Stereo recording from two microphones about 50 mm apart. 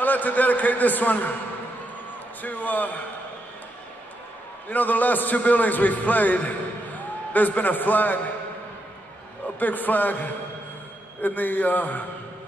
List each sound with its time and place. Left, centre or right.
0.0 s a man's voice: left
2.4 s a man's voice: left
4.6 s a man's voice: left
9.6 s a man's voice: left